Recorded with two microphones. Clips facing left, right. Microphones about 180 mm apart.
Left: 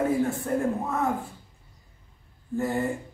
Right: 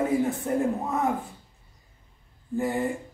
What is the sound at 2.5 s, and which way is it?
Speech, 15° right (ahead or behind).